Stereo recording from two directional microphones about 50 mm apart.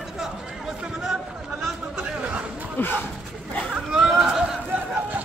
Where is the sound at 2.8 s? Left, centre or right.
Left.